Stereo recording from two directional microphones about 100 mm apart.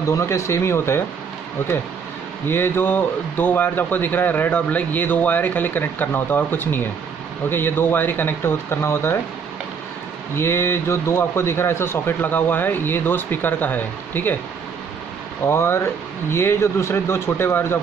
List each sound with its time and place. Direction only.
0.1 s a man's voice: 30° left (ahead or behind)
2.4 s a man's voice: 25° left (ahead or behind)
10.3 s a man's voice: 25° left (ahead or behind)
15.4 s a man's voice: 25° left (ahead or behind)